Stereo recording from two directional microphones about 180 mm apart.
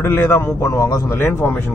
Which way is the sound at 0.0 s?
10° left (ahead or behind).